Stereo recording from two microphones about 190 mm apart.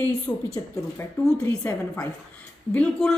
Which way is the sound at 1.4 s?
10° left (ahead or behind).